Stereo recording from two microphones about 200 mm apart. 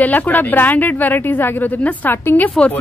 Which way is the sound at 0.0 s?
10° left (ahead or behind).